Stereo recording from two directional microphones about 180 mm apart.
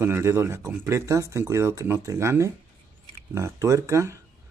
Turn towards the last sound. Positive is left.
turn(degrees=-15)  # may be behind; listen again after turning